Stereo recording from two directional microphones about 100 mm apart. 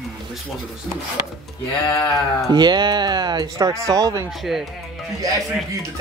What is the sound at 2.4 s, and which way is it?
Speech, 45° right (ahead or behind).